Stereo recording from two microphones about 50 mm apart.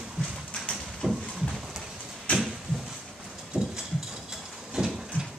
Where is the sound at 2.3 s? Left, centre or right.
Centre.